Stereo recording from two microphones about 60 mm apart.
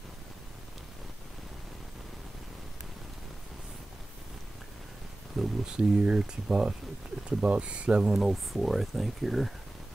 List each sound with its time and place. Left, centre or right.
5.4 s speech: centre
5.7 s speech: centre
8.1 s speech: centre